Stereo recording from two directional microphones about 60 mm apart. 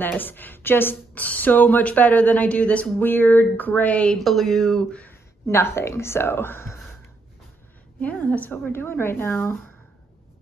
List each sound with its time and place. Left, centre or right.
0.2 s speech: left
4.2 s speech: centre
5.5 s speech: left
8.0 s a woman's voice: left